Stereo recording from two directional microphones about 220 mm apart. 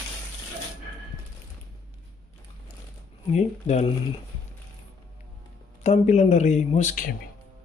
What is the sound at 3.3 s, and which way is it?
Speech, 30° left (ahead or behind).